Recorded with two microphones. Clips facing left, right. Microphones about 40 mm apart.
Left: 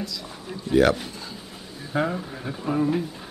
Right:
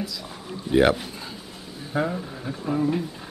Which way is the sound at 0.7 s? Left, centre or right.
Centre.